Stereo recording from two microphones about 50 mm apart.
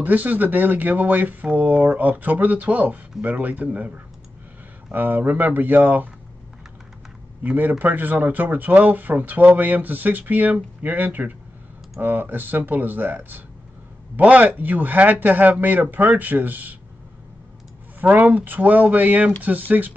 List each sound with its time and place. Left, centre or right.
0.0 s speech: right
7.4 s speech: right
18.0 s speech: right